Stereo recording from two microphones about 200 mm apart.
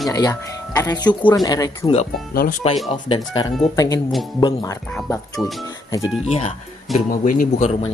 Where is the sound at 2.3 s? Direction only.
50° left (ahead or behind).